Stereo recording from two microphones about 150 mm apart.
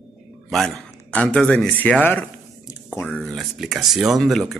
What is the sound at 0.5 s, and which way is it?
Speech, centre (ahead or behind).